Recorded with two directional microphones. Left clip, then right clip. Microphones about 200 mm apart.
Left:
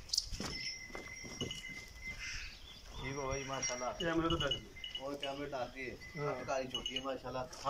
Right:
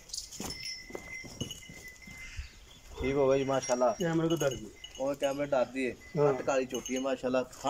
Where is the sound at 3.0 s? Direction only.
60° right (ahead or behind).